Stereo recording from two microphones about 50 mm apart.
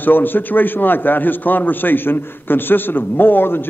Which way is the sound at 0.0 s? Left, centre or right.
Left.